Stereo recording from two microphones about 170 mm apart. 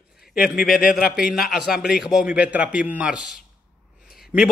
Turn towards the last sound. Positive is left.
turn(degrees=-5)  # may be behind; listen again after turning